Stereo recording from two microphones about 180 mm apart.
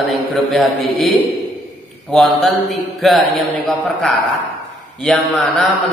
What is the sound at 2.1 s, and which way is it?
A man's voice, centre (ahead or behind).